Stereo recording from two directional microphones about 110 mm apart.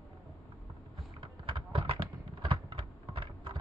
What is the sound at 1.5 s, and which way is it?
Clip-clop, 55° right (ahead or behind).